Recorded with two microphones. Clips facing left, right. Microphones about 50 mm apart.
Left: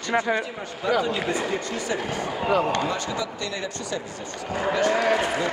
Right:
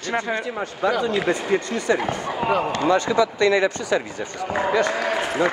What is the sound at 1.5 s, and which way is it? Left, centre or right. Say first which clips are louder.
Speech: right 6 dB; right.